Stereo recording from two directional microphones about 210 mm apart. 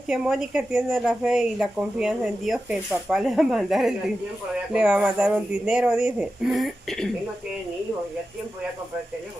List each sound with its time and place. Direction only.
0.1 s speech: centre (ahead or behind)